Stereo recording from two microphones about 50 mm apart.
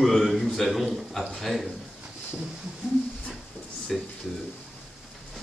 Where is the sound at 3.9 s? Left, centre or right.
Centre.